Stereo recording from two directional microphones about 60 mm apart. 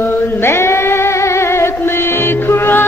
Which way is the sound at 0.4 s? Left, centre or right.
Left.